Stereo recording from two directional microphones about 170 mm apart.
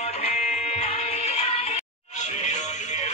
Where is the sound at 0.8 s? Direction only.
35° left (ahead or behind).